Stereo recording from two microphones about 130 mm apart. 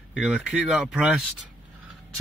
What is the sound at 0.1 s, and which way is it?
Speech, 5° right (ahead or behind).